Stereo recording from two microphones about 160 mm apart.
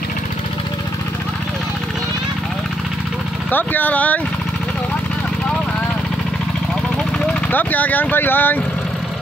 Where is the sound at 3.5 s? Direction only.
10° left (ahead or behind).